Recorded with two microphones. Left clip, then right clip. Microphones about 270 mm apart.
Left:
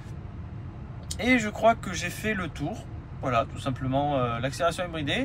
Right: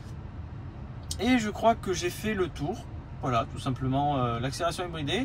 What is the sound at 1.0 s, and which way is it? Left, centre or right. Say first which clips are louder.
Speech: left 3 dB; centre.